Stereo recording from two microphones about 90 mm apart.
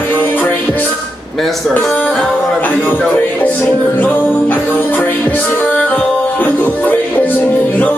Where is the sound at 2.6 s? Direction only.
20° left (ahead or behind).